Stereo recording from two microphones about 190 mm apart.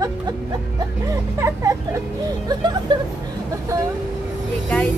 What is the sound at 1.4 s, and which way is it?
Speech, 15° right (ahead or behind).